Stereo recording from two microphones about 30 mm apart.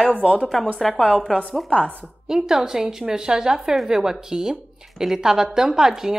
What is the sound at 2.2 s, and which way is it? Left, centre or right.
A woman's voice, centre.